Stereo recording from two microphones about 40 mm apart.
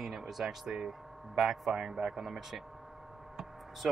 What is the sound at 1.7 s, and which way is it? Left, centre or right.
Speech, centre.